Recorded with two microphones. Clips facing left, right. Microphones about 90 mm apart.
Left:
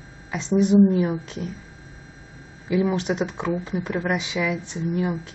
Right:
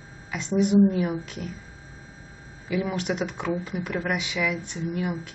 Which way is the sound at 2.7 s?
25° left (ahead or behind).